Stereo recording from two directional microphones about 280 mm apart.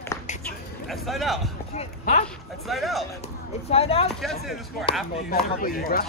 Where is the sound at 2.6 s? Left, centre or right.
Centre.